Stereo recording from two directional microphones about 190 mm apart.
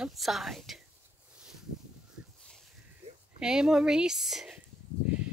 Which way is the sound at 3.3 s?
5° right (ahead or behind).